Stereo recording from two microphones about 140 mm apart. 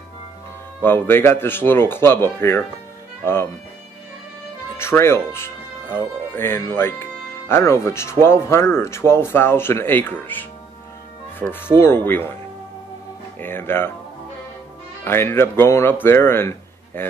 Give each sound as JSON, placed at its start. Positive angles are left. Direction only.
{"t": 0.8, "sound": "speech", "side_deg": 15}
{"t": 4.7, "sound": "speech", "side_deg": 20}
{"t": 11.6, "sound": "speech", "side_deg": 20}
{"t": 13.4, "sound": "speech", "side_deg": 15}
{"t": 15.0, "sound": "speech", "side_deg": 15}